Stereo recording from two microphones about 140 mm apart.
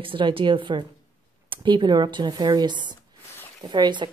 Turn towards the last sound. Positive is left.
turn(degrees=-30)  # may be behind; listen again after turning